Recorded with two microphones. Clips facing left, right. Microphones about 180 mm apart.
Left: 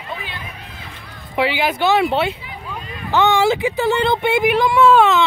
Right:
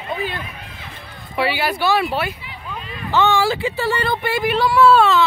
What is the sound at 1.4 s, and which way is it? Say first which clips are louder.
Speech: left 2 dB; 15° left (ahead or behind).